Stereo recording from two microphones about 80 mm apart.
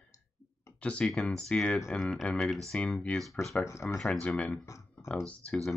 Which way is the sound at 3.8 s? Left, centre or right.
Left.